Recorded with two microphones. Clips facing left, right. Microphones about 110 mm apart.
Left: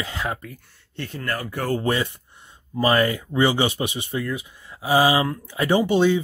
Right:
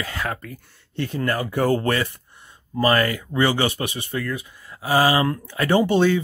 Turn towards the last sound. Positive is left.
turn(degrees=15)  # may be behind; listen again after turning